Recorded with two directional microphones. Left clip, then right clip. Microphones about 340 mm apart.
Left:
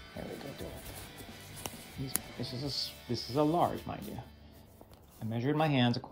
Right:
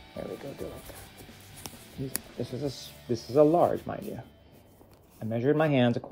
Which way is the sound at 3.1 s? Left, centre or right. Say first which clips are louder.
Right 8 dB; left.